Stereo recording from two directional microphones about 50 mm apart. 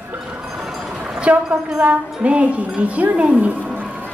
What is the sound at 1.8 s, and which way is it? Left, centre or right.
Speech, right.